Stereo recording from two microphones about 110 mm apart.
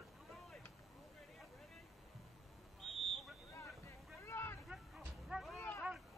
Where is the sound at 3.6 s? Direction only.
25° left (ahead or behind).